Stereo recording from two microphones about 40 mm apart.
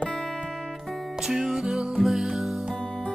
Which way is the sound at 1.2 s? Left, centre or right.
Centre.